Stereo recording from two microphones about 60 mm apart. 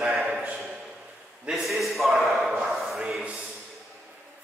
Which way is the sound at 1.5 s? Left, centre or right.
Centre.